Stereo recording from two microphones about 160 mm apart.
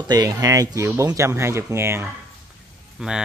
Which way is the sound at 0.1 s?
25° right (ahead or behind).